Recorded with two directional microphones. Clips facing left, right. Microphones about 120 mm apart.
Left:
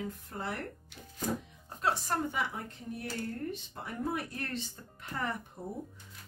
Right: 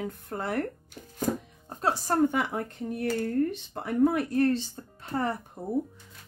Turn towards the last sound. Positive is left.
turn(degrees=-55)  # may be behind; listen again after turning